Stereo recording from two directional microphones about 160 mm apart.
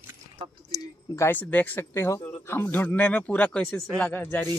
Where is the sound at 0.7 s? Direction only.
15° left (ahead or behind).